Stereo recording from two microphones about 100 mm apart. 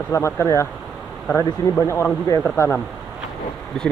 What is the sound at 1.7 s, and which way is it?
Speech, 25° left (ahead or behind).